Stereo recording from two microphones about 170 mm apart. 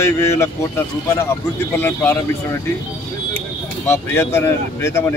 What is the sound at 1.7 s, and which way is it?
Speech, 10° left (ahead or behind).